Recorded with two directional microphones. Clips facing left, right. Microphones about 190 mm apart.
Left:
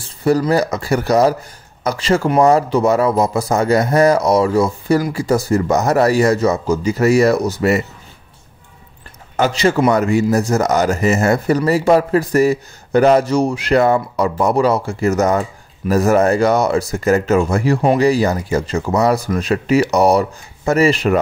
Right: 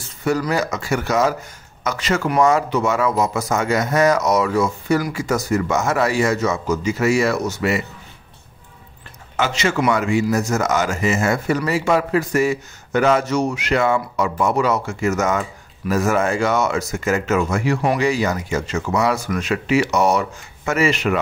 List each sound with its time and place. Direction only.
0.0 s speech: 30° left (ahead or behind)
9.4 s speech: 35° left (ahead or behind)